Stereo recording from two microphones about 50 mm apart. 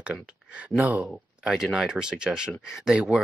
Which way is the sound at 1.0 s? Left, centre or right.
Centre.